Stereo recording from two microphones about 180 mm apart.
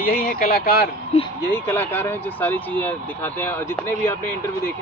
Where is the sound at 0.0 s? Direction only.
55° left (ahead or behind).